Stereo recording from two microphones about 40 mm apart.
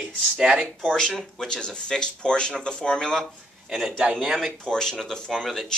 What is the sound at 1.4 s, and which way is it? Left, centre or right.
A man's voice, left.